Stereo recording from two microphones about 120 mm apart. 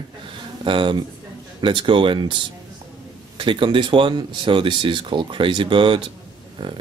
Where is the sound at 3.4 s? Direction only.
45° right (ahead or behind).